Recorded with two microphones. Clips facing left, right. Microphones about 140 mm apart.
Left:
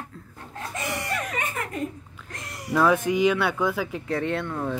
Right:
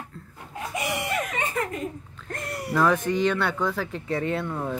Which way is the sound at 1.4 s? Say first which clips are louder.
Right 3 dB; 30° right (ahead or behind).